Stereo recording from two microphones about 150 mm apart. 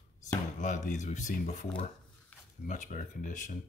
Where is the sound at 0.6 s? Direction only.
55° left (ahead or behind).